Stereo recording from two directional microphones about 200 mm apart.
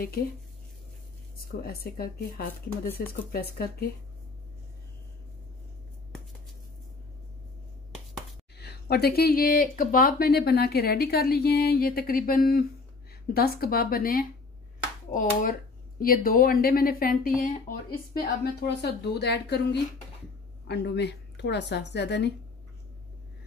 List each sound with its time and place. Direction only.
1.7 s speech: 50° left (ahead or behind)
8.5 s speech: 55° left (ahead or behind)
16.0 s a woman's voice: 45° left (ahead or behind)